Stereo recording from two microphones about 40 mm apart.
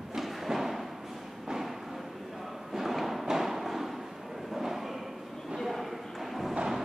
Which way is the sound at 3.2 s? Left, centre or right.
Centre.